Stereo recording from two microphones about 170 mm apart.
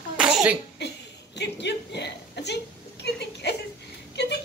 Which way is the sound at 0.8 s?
90° left.